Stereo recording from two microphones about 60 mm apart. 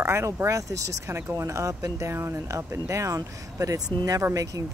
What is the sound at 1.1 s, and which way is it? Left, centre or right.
Speech, right.